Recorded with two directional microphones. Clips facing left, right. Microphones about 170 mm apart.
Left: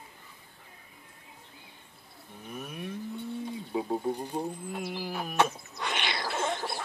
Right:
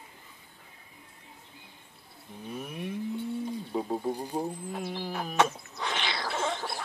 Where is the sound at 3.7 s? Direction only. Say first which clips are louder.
Left 1 dB; centre (ahead or behind).